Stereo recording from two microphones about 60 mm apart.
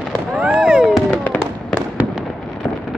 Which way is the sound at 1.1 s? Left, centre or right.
Left.